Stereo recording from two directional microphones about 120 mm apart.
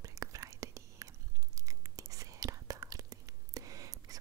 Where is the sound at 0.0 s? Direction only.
25° right (ahead or behind).